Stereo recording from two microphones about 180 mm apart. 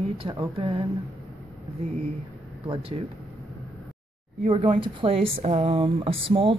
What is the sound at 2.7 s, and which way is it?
Speech, 30° right (ahead or behind).